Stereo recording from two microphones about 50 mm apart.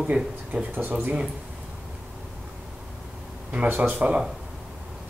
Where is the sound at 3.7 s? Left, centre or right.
Right.